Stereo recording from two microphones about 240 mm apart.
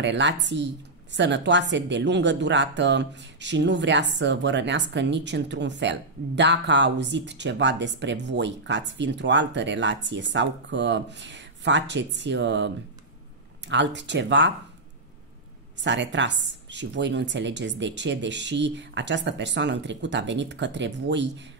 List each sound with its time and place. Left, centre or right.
0.0 s speech: right
15.8 s speech: right